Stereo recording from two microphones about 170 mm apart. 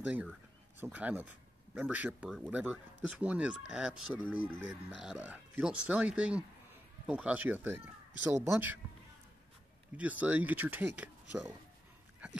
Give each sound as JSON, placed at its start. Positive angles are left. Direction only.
{"t": 0.0, "sound": "speech", "side_deg": -5}
{"t": 9.9, "sound": "speech", "side_deg": -10}